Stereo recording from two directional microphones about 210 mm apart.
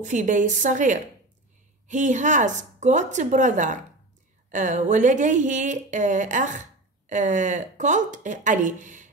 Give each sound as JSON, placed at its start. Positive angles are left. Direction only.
{"t": 0.0, "sound": "a woman's voice", "side_deg": -35}